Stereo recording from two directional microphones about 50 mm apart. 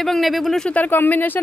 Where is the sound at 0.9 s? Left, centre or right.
Left.